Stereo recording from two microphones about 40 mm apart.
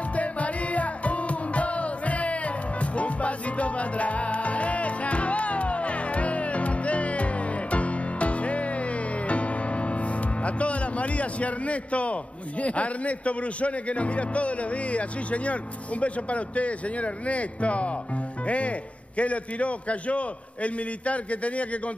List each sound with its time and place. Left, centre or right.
0.1 s music: left
18.4 s a man's voice: left